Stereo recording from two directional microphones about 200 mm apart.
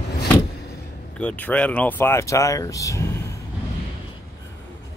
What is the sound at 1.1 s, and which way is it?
Speech, 5° left (ahead or behind).